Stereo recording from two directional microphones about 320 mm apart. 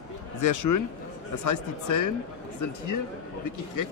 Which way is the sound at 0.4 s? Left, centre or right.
Left.